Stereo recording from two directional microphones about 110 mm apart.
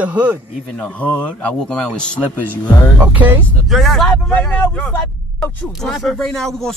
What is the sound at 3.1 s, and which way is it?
Speech, 15° right (ahead or behind).